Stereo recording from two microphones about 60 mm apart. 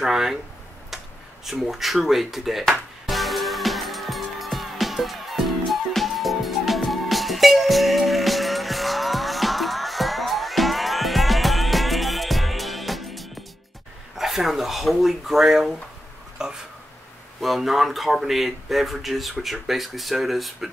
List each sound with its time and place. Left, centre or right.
0.0 s speech: centre
3.1 s music: centre
14.1 s speech: centre
16.4 s a sound: centre
17.4 s speech: centre